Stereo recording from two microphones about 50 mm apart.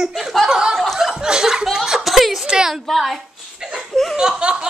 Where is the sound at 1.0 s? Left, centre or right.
Centre.